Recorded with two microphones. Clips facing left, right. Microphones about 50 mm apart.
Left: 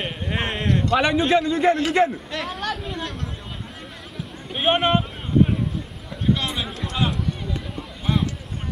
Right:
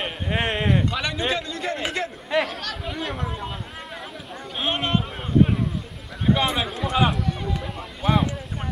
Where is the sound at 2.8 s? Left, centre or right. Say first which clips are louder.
Right 1 dB; centre.